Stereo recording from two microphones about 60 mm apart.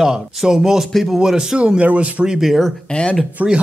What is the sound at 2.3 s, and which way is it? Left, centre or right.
Speech, centre.